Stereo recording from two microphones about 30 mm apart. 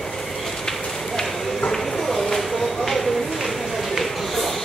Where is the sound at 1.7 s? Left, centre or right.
Centre.